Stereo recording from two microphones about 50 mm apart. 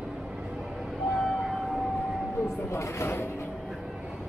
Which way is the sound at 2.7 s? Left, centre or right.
Left.